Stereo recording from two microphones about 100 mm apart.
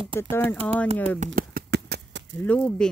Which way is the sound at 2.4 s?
15° left (ahead or behind).